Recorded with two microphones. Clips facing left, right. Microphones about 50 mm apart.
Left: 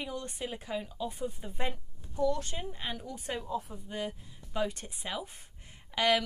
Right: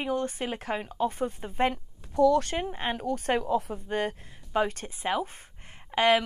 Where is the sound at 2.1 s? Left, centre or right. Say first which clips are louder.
Right 9 dB; right.